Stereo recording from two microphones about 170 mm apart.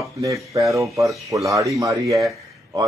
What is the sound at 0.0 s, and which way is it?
Speech, 20° right (ahead or behind).